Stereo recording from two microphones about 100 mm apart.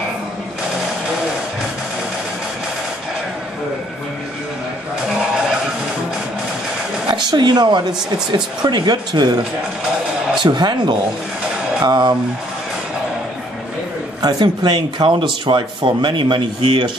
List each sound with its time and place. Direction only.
7.1 s speech: 50° right (ahead or behind)
10.4 s speech: 50° right (ahead or behind)
14.2 s speech: 45° right (ahead or behind)